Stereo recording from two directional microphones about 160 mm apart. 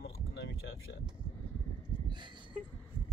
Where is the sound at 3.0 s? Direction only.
30° left (ahead or behind).